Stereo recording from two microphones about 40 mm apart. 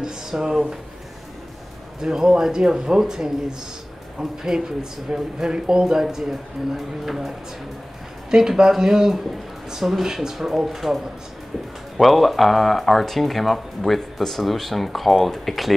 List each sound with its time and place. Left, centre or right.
0.0 s a sound: centre
2.0 s speech: centre
12.0 s speech: centre